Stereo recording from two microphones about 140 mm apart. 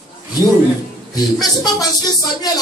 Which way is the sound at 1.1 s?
30° left (ahead or behind).